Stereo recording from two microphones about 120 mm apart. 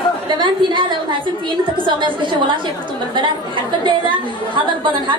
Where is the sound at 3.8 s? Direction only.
40° right (ahead or behind).